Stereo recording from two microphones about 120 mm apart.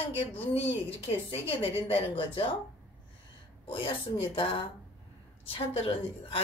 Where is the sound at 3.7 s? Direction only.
45° left (ahead or behind).